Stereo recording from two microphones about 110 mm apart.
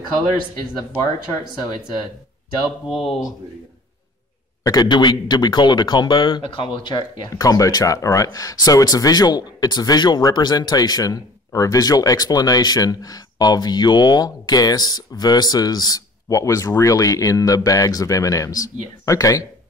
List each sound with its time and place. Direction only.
0.7 s speech: 35° left (ahead or behind)
2.9 s speech: 60° left (ahead or behind)
4.6 s speech: 40° left (ahead or behind)